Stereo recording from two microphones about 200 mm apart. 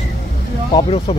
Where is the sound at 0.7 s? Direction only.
30° left (ahead or behind).